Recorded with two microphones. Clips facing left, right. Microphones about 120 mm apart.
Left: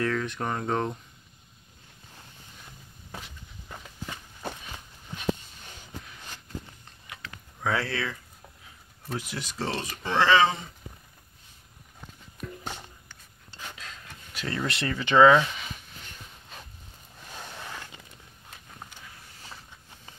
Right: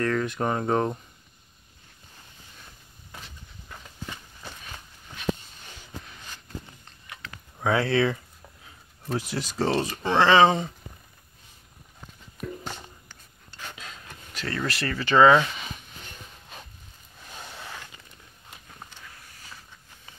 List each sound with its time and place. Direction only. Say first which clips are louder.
0.0 s speech: right 3 dB; 5° right (ahead or behind)
3.6 s a sound: even; 10° left (ahead or behind)
7.6 s speech: right 6 dB; 20° right (ahead or behind)
9.1 s speech: right 5 dB; 35° right (ahead or behind)
12.6 s a sound: even; 10° left (ahead or behind)
14.3 s speech: right 1 dB; 10° left (ahead or behind)
15.2 s speech: right 1 dB; centre (ahead or behind)
18.8 s vehicle: left 1 dB; 10° left (ahead or behind)